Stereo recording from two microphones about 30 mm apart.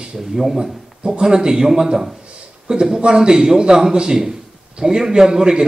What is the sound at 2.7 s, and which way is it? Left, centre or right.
A man's voice, right.